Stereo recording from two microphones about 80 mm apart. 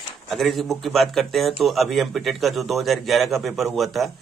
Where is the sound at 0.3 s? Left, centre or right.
Centre.